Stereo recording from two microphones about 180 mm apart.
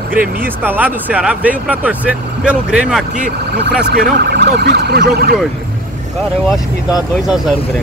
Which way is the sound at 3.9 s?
60° right (ahead or behind).